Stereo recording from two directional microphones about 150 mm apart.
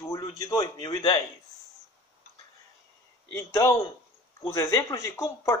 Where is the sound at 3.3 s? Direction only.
20° left (ahead or behind).